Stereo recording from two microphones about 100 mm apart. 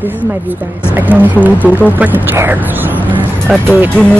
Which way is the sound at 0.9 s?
20° right (ahead or behind).